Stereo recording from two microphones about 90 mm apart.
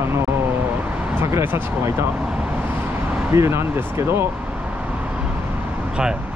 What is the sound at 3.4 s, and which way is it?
Speech, 30° right (ahead or behind).